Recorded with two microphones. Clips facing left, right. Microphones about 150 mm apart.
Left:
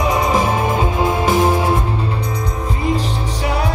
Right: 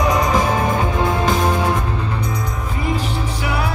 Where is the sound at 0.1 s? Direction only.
20° left (ahead or behind).